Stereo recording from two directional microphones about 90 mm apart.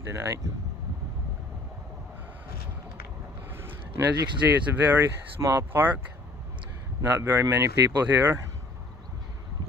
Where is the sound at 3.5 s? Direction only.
25° right (ahead or behind).